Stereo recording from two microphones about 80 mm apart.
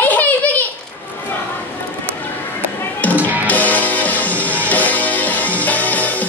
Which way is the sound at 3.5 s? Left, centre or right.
Centre.